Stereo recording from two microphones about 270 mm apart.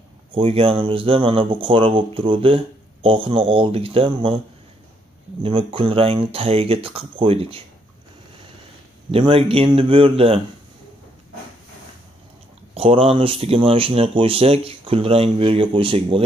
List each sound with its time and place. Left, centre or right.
0.3 s speech: centre
5.4 s speech: centre
9.1 s speech: right
12.7 s speech: right